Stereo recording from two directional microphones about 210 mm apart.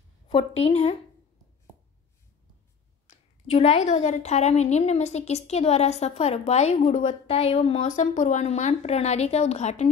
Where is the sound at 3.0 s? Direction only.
30° left (ahead or behind).